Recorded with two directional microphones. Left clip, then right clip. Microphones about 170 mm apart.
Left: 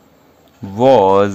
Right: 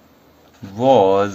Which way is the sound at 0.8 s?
50° left (ahead or behind).